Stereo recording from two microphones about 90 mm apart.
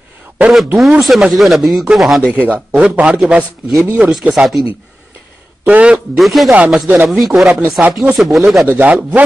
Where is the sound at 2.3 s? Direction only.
15° right (ahead or behind).